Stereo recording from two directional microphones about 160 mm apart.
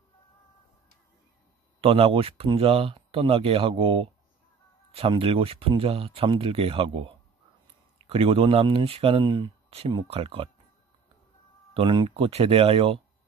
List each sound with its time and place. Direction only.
1.8 s speech: 35° right (ahead or behind)
8.1 s speech: 35° right (ahead or behind)
11.7 s speech: 30° right (ahead or behind)